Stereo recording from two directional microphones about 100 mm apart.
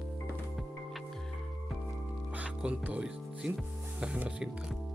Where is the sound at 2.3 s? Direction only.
15° right (ahead or behind).